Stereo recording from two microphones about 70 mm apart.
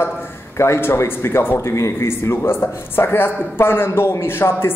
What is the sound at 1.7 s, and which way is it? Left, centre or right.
A man's voice, left.